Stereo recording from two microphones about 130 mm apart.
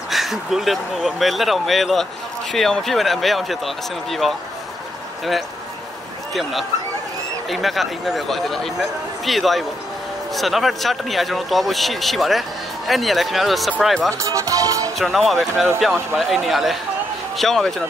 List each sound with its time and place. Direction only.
0.1 s speech: centre (ahead or behind)
7.4 s speech: centre (ahead or behind)
14.1 s speech: 25° right (ahead or behind)
15.0 s speech: centre (ahead or behind)